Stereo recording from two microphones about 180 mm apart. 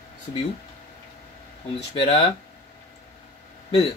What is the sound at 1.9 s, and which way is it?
Speech, 35° left (ahead or behind).